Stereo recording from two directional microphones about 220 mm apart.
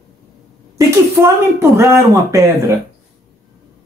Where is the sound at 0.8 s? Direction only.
10° right (ahead or behind).